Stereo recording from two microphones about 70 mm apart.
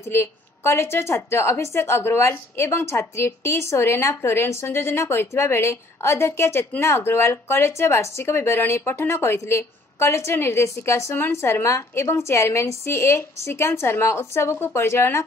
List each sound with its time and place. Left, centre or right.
0.1 s speech: left